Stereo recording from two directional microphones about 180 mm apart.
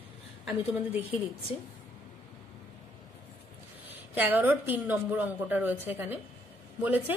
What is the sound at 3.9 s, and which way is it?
A woman's voice, 10° right (ahead or behind).